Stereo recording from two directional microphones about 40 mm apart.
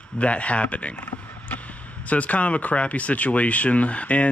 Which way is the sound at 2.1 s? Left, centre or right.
Left.